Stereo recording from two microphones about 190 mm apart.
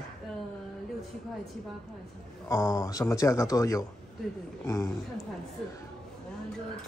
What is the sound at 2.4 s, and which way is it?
Speech, 15° left (ahead or behind).